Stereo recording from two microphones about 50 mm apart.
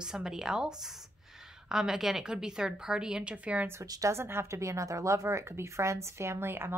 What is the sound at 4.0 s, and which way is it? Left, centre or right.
A woman's voice, right.